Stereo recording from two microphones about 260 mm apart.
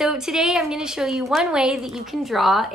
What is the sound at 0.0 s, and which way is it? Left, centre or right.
A woman's voice, centre.